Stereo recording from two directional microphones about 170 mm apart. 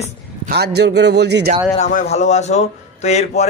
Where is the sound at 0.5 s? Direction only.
75° right (ahead or behind).